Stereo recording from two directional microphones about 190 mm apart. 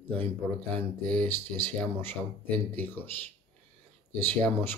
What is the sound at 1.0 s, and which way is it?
Speech, 5° left (ahead or behind).